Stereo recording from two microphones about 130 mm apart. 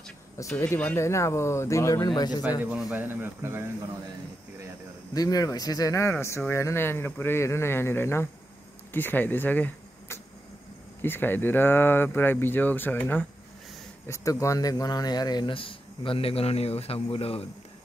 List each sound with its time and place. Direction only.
0.4 s speech: 20° left (ahead or behind)
2.9 s speech: 15° right (ahead or behind)
5.1 s speech: 30° left (ahead or behind); by 13.2 s 15° left (ahead or behind)
14.0 s speech: 25° left (ahead or behind); by 17.5 s 50° left (ahead or behind)